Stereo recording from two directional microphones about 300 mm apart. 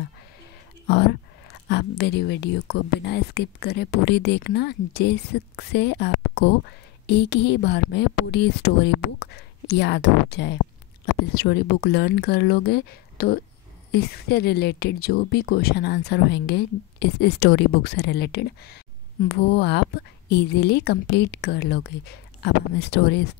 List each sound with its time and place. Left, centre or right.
1.7 s speech: left